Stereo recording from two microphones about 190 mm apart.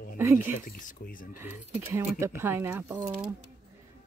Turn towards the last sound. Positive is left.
turn(degrees=-10)  # may be behind; listen again after turning